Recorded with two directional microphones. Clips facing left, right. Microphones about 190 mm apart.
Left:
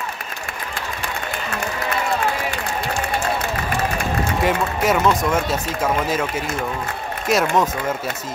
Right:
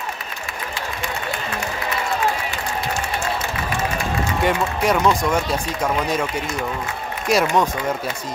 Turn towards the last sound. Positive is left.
turn(degrees=0)  # may be behind; listen again after turning